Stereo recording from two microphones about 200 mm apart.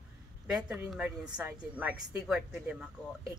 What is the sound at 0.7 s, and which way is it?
A woman's voice, 5° right (ahead or behind).